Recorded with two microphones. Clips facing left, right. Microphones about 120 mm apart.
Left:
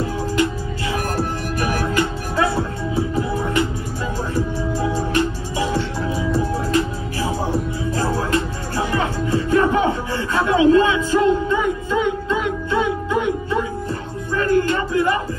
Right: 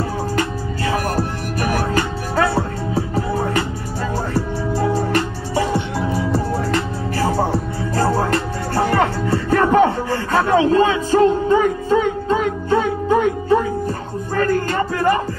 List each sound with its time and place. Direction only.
0.4 s music: 45° right (ahead or behind)
6.7 s music: 60° right (ahead or behind)